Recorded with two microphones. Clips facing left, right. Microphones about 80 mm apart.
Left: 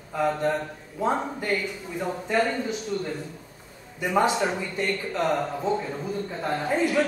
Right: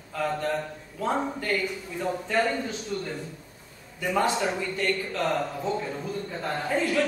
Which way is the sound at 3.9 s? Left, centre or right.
Left.